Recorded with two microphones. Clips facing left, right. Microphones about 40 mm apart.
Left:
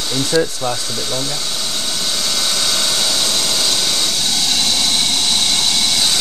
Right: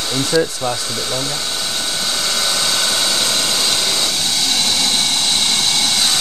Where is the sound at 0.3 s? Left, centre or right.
Centre.